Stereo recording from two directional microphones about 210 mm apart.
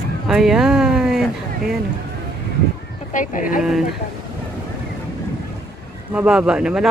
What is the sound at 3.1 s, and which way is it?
Speech, 40° left (ahead or behind).